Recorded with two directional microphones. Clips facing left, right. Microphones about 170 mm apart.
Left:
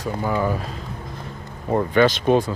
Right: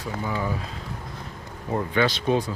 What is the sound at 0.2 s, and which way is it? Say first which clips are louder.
Speech: left 6 dB; 55° left (ahead or behind).